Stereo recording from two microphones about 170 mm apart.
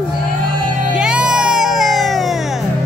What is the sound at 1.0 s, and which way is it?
Music, 5° right (ahead or behind).